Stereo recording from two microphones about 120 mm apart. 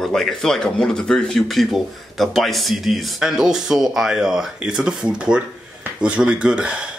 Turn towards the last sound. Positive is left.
turn(degrees=-10)  # may be behind; listen again after turning